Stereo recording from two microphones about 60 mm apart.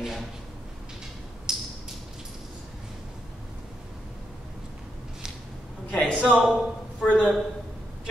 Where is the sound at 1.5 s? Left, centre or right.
Centre.